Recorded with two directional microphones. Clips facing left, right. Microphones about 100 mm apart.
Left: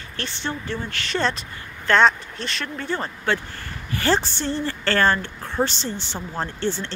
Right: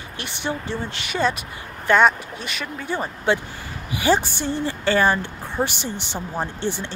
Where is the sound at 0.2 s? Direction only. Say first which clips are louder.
Right 1 dB; 15° right (ahead or behind).